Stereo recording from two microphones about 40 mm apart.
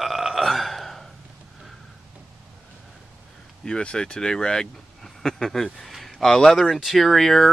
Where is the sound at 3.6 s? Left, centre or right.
Left.